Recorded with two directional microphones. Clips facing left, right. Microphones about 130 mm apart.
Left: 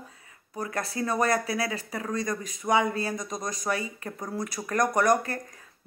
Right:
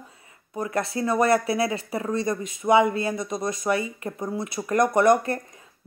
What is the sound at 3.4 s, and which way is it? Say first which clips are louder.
Speech: right 6 dB; 25° right (ahead or behind).